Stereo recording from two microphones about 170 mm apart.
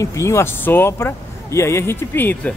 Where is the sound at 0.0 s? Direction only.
15° left (ahead or behind).